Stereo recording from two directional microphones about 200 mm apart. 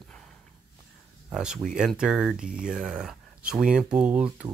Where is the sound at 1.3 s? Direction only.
5° right (ahead or behind).